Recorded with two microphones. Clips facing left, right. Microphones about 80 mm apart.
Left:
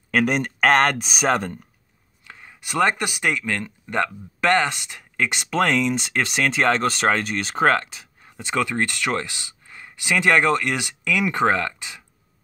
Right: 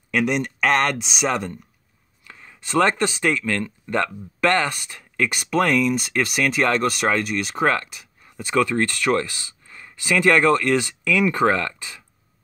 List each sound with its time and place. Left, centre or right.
0.1 s speech: left
2.2 s speech: left